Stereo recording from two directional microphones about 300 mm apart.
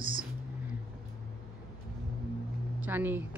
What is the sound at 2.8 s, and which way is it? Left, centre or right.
Speech, centre.